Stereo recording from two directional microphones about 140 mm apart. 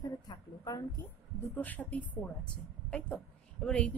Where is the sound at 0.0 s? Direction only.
30° left (ahead or behind).